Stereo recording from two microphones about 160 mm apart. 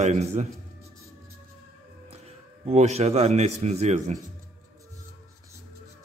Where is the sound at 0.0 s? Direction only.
45° right (ahead or behind).